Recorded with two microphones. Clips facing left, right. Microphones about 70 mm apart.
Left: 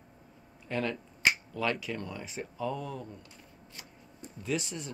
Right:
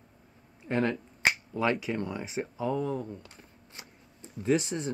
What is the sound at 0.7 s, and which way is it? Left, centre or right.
Speech, right.